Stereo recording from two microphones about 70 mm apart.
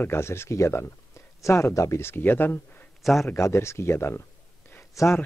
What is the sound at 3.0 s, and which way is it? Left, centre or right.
Speech, centre.